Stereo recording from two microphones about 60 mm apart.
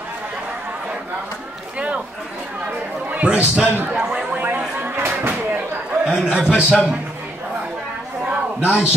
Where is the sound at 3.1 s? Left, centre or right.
Right.